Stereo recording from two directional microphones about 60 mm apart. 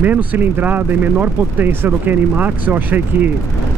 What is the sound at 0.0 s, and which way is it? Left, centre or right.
Speech, right.